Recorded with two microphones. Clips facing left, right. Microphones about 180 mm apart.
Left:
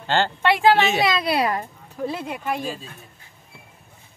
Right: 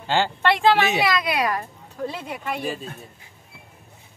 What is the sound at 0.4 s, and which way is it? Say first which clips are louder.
Speech: left 2 dB; 10° left (ahead or behind).